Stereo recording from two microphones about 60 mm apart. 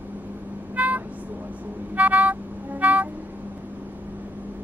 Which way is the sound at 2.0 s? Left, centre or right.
Right.